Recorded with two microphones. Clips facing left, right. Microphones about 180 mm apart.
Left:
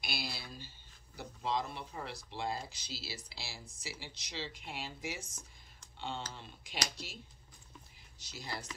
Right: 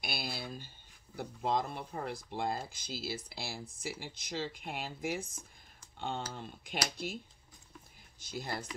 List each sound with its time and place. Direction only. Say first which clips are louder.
0.0 s a sound: right 3 dB; 50° right (ahead or behind)
1.1 s speech: right 3 dB; 50° right (ahead or behind)
8.2 s speech: right 5 dB; 50° right (ahead or behind)